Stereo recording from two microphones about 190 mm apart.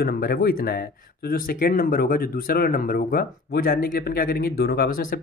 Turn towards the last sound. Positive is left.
turn(degrees=45)  # may be behind; listen again after turning